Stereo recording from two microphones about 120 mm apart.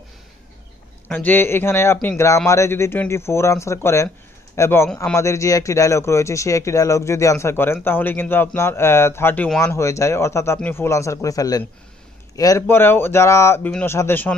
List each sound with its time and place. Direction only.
1.0 s a man's voice: 15° left (ahead or behind); by 12.6 s 30° left (ahead or behind)
12.6 s speech: 20° left (ahead or behind)